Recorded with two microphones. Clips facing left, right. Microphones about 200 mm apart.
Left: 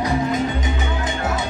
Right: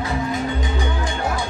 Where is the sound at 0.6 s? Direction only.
20° left (ahead or behind).